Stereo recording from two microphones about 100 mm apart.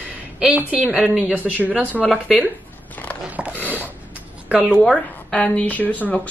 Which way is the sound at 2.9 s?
15° left (ahead or behind).